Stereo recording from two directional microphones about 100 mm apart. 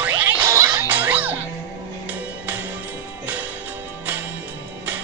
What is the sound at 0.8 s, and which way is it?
Music, 15° right (ahead or behind).